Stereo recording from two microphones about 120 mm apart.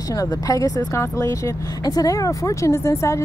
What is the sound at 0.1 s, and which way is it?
A woman's voice, 30° left (ahead or behind).